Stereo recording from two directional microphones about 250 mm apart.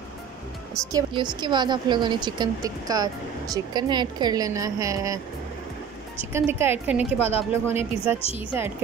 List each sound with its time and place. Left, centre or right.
0.9 s speech: centre
6.3 s speech: centre